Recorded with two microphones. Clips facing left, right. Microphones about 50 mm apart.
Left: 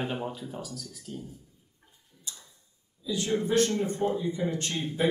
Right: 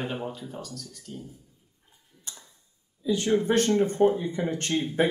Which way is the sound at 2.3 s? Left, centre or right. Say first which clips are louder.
Left 1 dB; right.